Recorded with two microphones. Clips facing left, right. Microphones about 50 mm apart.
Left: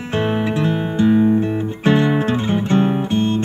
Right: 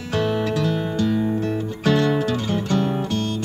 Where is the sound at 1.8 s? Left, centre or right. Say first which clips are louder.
Left 3 dB; left.